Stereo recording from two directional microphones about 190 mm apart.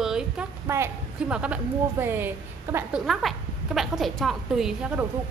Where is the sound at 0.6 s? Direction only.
15° right (ahead or behind).